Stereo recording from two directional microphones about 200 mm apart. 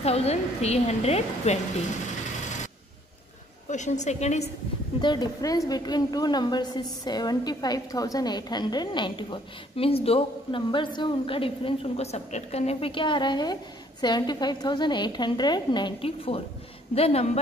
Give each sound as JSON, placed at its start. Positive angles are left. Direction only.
{"t": 0.0, "sound": "a woman's voice", "side_deg": 30}
{"t": 3.6, "sound": "a woman's voice", "side_deg": 35}
{"t": 5.0, "sound": "a woman's voice", "side_deg": 20}